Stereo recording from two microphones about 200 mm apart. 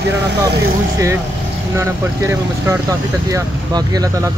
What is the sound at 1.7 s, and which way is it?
Speech, 15° right (ahead or behind).